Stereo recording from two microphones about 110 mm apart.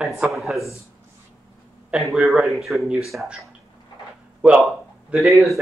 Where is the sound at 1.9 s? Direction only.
Centre (ahead or behind).